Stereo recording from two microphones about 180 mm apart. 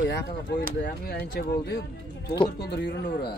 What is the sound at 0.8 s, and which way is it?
Speech, 60° left (ahead or behind).